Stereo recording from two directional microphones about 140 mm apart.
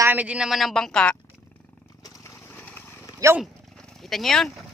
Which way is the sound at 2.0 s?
25° left (ahead or behind).